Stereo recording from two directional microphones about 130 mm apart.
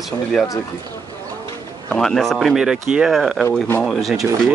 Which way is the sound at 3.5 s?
15° left (ahead or behind).